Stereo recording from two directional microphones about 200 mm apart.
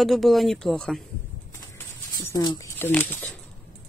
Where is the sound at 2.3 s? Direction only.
20° left (ahead or behind).